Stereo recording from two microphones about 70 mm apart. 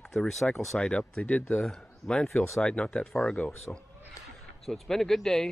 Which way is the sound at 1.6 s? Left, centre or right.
Centre.